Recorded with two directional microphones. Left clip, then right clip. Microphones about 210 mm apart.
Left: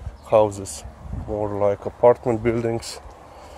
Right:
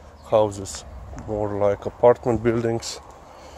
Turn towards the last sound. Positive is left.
turn(degrees=0)  # may be behind; listen again after turning